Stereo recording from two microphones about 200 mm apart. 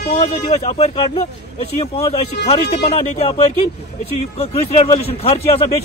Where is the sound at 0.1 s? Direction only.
30° left (ahead or behind).